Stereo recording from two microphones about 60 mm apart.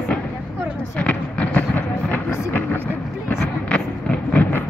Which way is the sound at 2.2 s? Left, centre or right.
Left.